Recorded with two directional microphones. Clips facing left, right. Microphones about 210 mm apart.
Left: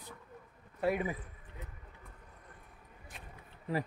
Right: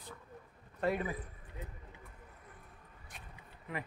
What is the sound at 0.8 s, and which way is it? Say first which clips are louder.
Speech: left 2 dB; 10° left (ahead or behind).